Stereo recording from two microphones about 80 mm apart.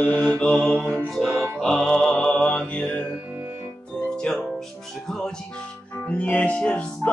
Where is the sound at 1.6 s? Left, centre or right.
Centre.